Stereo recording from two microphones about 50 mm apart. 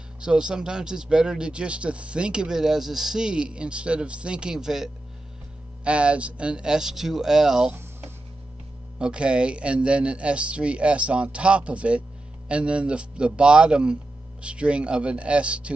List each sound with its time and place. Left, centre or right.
0.2 s speech: centre
5.9 s speech: right
8.9 s speech: centre